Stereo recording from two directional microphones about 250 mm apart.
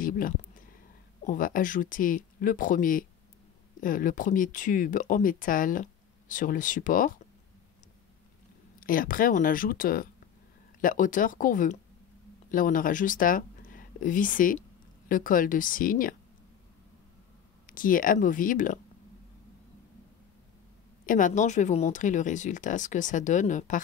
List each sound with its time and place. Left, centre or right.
0.0 s a sound: left
1.2 s speech: left
8.7 s speech: left
17.6 s speech: left
21.0 s speech: left